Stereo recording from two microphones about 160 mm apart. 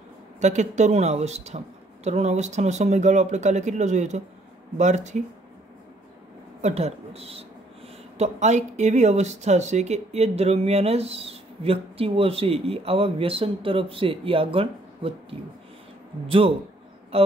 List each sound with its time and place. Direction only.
0.4 s speech: 45° right (ahead or behind)
6.6 s speech: 45° right (ahead or behind)